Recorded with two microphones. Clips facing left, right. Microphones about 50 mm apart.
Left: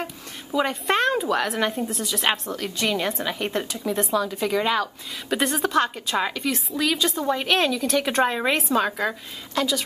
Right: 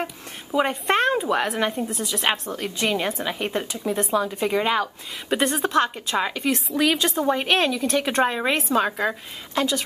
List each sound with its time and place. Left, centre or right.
0.0 s a sound: centre
0.8 s a woman's voice: centre
2.5 s a woman's voice: centre
4.2 s a woman's voice: centre
5.4 s a woman's voice: centre
6.5 s a woman's voice: right
7.2 s a woman's voice: centre